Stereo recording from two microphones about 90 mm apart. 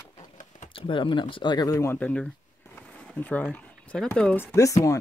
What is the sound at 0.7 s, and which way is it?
Speech, 70° left (ahead or behind).